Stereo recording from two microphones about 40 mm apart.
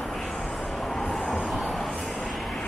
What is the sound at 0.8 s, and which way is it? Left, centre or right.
Train, centre.